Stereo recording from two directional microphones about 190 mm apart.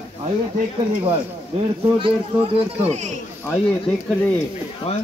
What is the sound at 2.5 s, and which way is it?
Speech, 35° right (ahead or behind).